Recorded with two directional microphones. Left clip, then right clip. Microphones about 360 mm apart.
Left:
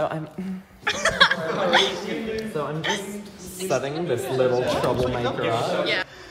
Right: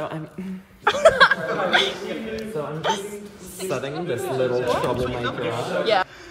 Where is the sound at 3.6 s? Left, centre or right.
Centre.